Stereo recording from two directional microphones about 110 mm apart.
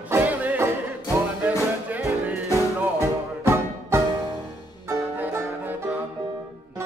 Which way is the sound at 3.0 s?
25° right (ahead or behind).